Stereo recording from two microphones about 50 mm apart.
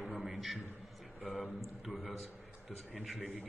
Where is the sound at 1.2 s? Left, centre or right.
Right.